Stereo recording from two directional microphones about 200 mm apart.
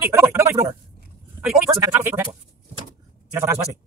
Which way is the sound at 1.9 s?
15° right (ahead or behind).